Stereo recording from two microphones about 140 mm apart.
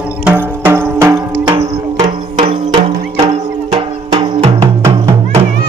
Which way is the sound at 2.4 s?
40° right (ahead or behind).